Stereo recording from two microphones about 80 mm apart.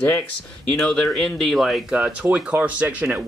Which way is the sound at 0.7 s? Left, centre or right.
Centre.